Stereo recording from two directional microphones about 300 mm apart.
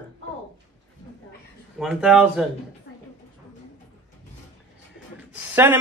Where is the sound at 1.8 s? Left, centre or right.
Centre.